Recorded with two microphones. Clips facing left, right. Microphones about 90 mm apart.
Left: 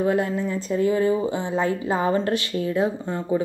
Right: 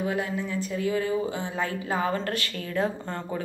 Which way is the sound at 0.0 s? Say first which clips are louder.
Left 6 dB; 35° left (ahead or behind).